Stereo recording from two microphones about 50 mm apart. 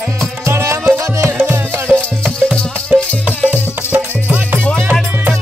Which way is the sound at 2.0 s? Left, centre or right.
Centre.